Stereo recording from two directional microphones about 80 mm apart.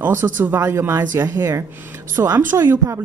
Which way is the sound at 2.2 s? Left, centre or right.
Right.